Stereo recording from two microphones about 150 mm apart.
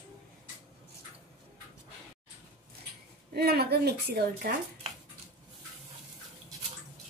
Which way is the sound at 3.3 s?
90° right.